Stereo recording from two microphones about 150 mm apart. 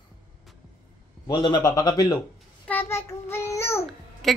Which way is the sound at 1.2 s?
30° left (ahead or behind).